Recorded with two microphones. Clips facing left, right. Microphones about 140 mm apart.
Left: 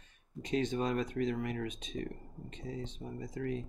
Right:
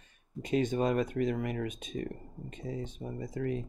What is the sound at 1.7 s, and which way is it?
Speech, 50° right (ahead or behind).